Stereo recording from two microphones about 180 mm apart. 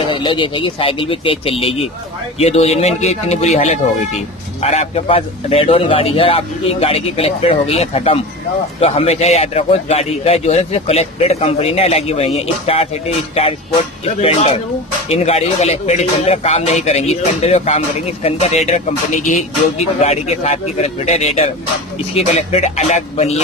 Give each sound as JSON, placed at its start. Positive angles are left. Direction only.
{"t": 0.1, "sound": "speech", "side_deg": 30}
{"t": 20.0, "sound": "speech", "side_deg": 35}